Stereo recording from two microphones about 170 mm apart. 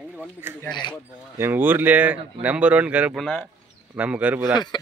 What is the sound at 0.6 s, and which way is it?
Speech, 25° left (ahead or behind).